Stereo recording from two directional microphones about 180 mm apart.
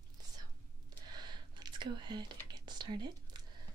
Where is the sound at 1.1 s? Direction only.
25° right (ahead or behind).